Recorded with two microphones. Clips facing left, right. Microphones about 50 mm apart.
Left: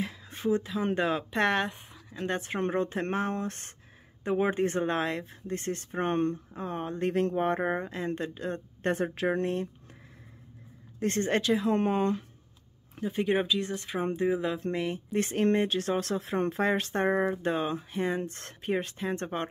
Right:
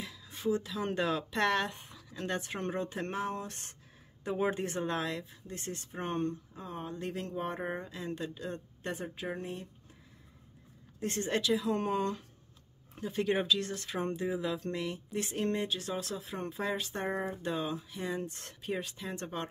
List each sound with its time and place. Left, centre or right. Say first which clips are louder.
0.0 s speech: left 4 dB; left
1.7 s speech: left 3 dB; centre; by 8.9 s left
8.9 s speech: left 10 dB; left
11.0 s speech: left 5 dB; left
13.0 s speech: left 4 dB; left
14.2 s speech: left 6 dB; left
15.1 s speech: left 8 dB; left